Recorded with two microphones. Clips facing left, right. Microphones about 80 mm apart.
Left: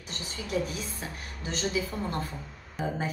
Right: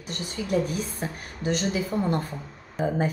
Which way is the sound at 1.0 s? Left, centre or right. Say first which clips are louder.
Right 8 dB; right.